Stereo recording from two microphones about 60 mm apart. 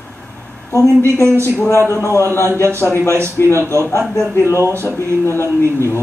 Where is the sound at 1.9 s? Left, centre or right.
Left.